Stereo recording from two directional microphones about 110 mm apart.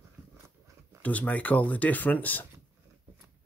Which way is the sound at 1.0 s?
15° left (ahead or behind).